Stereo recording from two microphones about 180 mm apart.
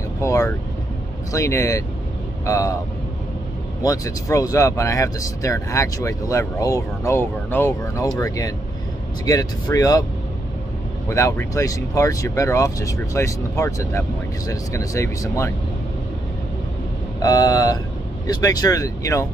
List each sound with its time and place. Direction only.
0.2 s vehicle: 15° left (ahead or behind)
1.3 s speech: 15° left (ahead or behind)
3.8 s speech: 20° left (ahead or behind)
11.1 s speech: 15° left (ahead or behind)
17.2 s speech: 20° left (ahead or behind)